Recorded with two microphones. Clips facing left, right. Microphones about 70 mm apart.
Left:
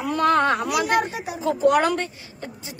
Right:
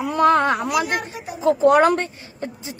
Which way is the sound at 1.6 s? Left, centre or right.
Right.